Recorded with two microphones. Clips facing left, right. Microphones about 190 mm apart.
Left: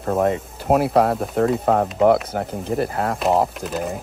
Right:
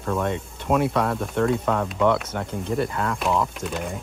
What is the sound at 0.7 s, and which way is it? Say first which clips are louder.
Speech: left 4 dB; 60° left (ahead or behind).